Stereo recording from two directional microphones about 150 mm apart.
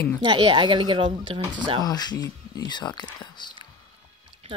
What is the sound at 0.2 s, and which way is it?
A woman's voice, 35° right (ahead or behind).